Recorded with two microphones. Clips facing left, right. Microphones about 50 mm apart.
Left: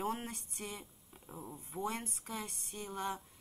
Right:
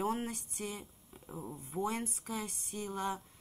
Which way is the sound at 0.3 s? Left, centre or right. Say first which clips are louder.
Right 4 dB; left.